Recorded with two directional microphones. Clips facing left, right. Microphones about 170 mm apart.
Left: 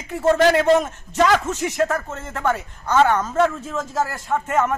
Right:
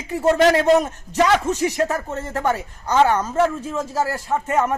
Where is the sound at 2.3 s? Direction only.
35° right (ahead or behind).